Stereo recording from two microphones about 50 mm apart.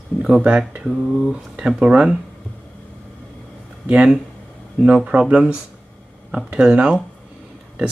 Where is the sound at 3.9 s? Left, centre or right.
Right.